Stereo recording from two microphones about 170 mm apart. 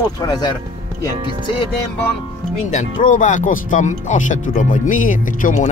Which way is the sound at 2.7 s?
45° left (ahead or behind).